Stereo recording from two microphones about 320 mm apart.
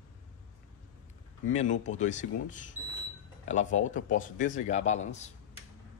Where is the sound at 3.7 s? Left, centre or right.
Left.